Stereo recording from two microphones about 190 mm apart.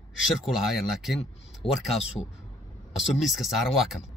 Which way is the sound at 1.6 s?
30° left (ahead or behind).